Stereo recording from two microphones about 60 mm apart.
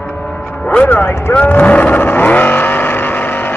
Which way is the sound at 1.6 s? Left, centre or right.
Left.